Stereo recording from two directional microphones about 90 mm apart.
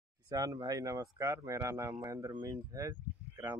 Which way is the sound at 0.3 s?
40° right (ahead or behind).